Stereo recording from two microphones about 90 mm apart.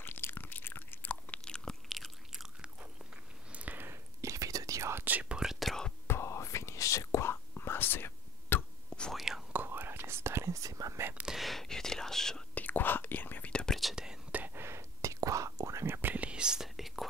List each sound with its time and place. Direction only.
0.0 s biting: 25° left (ahead or behind); by 2.4 s centre (ahead or behind)
3.5 s whispering: 20° right (ahead or behind); by 5.0 s 35° right (ahead or behind)
5.0 s whispering: 15° right (ahead or behind); by 5.9 s 5° left (ahead or behind)
6.0 s whispering: 30° left (ahead or behind)
9.1 s whispering: 5° right (ahead or behind)
9.5 s whispering: 20° right (ahead or behind); by 11.1 s 35° right (ahead or behind)
11.2 s whispering: centre (ahead or behind)
12.5 s whispering: 20° left (ahead or behind)
13.7 s whispering: 5° right (ahead or behind)
14.3 s whispering: 20° right (ahead or behind); by 17.0 s centre (ahead or behind)